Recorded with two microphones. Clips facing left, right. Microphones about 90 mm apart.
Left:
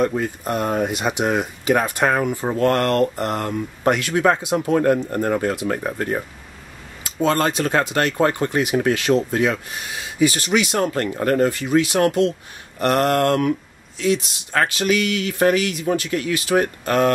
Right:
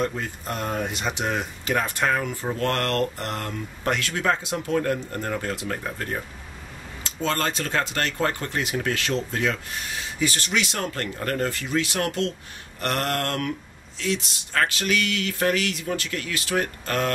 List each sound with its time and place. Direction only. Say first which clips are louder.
0.5 s speech: left 6 dB; 15° left (ahead or behind)
4.7 s speech: left 6 dB; 30° left (ahead or behind)
5.9 s speech: left 7 dB; 25° left (ahead or behind)
7.2 s speech: left 7 dB; 10° left (ahead or behind)